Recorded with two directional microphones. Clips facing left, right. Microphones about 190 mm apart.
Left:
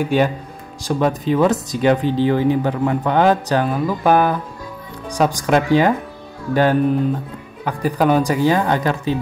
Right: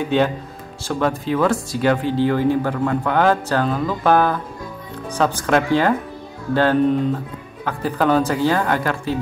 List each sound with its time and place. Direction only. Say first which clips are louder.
0.0 s speech: left 1 dB; 10° left (ahead or behind)